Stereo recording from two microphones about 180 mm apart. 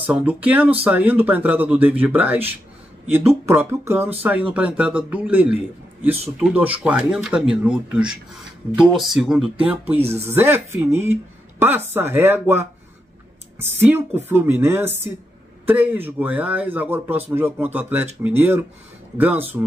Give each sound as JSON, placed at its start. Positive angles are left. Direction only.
{"t": 0.0, "sound": "a man's voice", "side_deg": -10}
{"t": 6.8, "sound": "speech", "side_deg": -5}
{"t": 9.9, "sound": "speech", "side_deg": -35}
{"t": 10.2, "sound": "a man's voice", "side_deg": -10}